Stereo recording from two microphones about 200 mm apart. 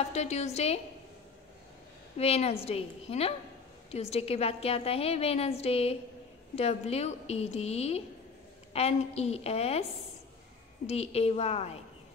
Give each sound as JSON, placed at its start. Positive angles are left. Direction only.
{"t": 0.1, "sound": "a woman's voice", "side_deg": 35}
{"t": 2.1, "sound": "a woman's voice", "side_deg": 30}
{"t": 10.9, "sound": "a woman's voice", "side_deg": 30}